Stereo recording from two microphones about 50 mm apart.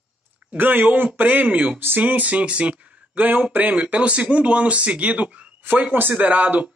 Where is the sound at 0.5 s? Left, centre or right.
Right.